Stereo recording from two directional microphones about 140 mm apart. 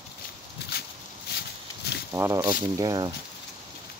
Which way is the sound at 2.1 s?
20° right (ahead or behind).